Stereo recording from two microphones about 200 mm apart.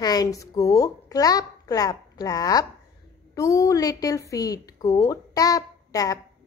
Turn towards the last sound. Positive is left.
turn(degrees=15)  # may be behind; listen again after turning